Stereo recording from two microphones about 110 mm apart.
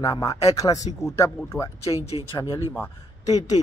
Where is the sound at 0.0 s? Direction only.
35° left (ahead or behind).